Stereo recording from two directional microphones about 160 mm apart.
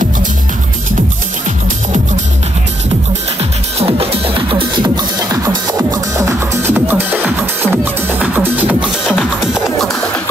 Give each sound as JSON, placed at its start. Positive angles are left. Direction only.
{"t": 3.8, "sound": "music", "side_deg": -35}